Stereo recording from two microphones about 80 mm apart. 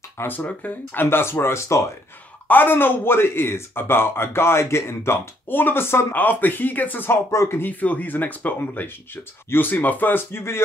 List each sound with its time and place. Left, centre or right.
0.2 s speech: left
2.4 s speech: left
7.2 s speech: left
7.8 s speech: centre